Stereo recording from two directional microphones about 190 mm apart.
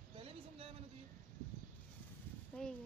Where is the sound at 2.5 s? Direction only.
5° left (ahead or behind).